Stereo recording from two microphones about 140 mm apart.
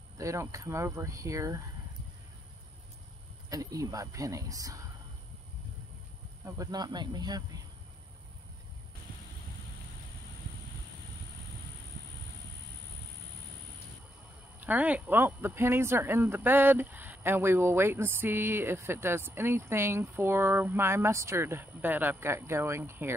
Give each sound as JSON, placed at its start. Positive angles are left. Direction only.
{"t": 0.2, "sound": "speech", "side_deg": -20}
{"t": 3.4, "sound": "speech", "side_deg": -25}
{"t": 6.4, "sound": "speech", "side_deg": -25}
{"t": 14.6, "sound": "speech", "side_deg": -10}